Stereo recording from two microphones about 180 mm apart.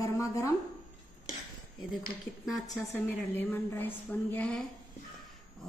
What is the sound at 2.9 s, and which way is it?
A woman's voice, 10° left (ahead or behind).